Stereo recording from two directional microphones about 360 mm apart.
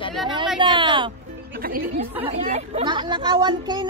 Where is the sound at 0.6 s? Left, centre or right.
Centre.